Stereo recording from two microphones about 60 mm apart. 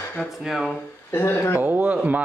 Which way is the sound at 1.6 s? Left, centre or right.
Right.